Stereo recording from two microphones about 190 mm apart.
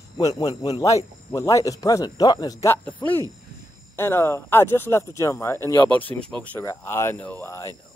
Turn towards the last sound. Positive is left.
turn(degrees=15)  # may be behind; listen again after turning